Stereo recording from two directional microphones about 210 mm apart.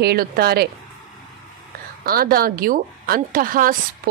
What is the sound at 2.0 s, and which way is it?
A woman's voice, 45° right (ahead or behind).